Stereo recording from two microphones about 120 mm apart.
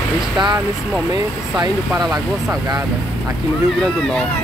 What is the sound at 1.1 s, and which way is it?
Speech, 30° right (ahead or behind).